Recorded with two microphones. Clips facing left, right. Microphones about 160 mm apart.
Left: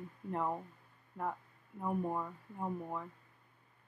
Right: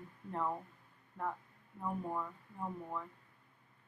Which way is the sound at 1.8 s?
15° left (ahead or behind).